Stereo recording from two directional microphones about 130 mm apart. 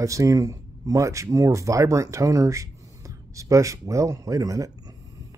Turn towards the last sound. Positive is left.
turn(degrees=-25)  # may be behind; listen again after turning